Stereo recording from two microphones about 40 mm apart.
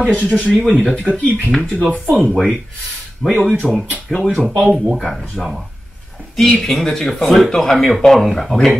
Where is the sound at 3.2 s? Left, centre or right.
Centre.